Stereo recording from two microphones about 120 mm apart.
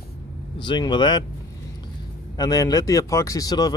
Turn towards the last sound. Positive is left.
turn(degrees=35)  # may be behind; listen again after turning